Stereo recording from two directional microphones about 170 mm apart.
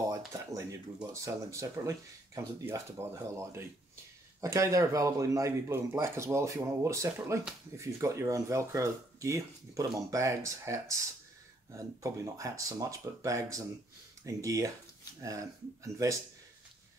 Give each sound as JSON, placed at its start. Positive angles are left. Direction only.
{"t": 0.5, "sound": "speech", "side_deg": -20}